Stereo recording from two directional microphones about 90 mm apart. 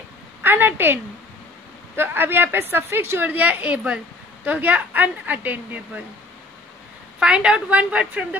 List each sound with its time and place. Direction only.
0.4 s a woman's voice: 25° right (ahead or behind)
2.0 s a woman's voice: 25° right (ahead or behind)
7.2 s a woman's voice: 10° right (ahead or behind)